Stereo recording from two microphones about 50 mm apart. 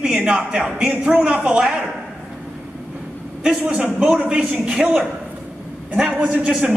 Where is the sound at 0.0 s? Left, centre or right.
Right.